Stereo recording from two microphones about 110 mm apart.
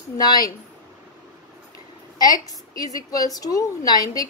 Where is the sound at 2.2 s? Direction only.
35° left (ahead or behind).